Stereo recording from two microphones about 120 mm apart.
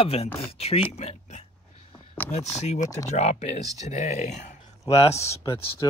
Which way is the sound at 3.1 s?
65° left (ahead or behind).